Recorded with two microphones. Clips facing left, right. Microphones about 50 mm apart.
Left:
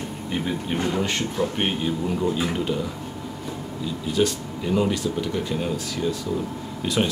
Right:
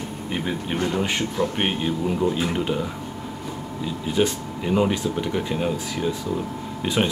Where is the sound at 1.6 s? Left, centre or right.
Centre.